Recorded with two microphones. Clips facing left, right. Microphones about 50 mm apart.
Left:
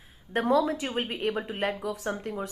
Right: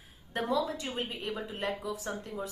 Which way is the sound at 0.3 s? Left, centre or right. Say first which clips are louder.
Left 7 dB; left.